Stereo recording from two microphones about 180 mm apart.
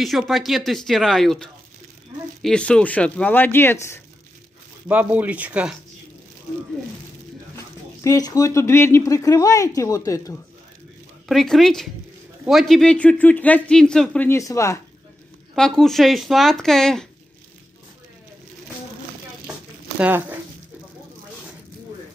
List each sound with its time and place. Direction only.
0.0 s speech: centre (ahead or behind)
4.8 s speech: 10° right (ahead or behind)
7.5 s speech: 15° left (ahead or behind)
11.2 s speech: centre (ahead or behind); by 14.8 s 15° left (ahead or behind)
15.5 s speech: 5° left (ahead or behind)
20.0 s speech: 10° right (ahead or behind)